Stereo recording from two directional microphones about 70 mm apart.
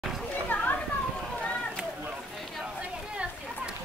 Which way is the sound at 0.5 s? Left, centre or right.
Left.